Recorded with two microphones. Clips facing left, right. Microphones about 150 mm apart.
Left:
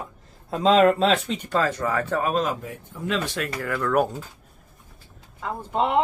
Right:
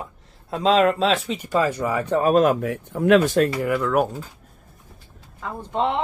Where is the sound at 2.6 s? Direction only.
70° right (ahead or behind).